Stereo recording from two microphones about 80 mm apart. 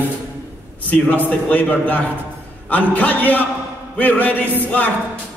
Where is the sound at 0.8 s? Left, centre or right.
Left.